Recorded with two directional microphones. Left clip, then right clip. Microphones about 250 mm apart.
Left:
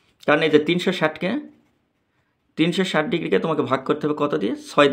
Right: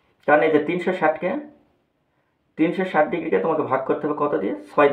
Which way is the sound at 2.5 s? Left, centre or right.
Left.